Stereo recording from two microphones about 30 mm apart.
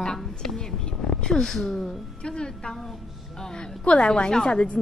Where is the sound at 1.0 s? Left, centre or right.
Left.